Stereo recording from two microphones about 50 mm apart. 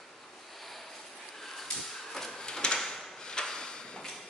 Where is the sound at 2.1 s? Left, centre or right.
Centre.